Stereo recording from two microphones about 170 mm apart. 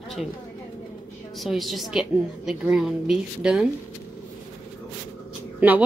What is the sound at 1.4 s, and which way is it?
A woman's voice, centre (ahead or behind).